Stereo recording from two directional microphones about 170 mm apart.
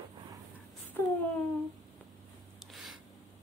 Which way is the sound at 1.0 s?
15° left (ahead or behind).